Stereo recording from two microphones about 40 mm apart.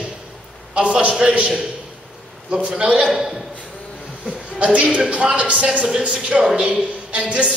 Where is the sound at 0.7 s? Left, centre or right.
Right.